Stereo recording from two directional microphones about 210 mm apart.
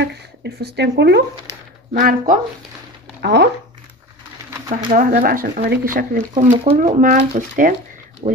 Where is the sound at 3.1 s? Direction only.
55° right (ahead or behind).